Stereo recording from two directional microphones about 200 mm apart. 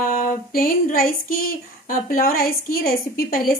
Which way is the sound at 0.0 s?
45° left (ahead or behind).